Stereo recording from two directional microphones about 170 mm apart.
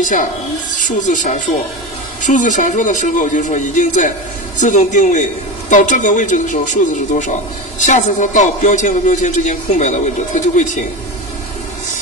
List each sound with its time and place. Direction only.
0.0 s music: 50° left (ahead or behind)
7.8 s music: 45° left (ahead or behind)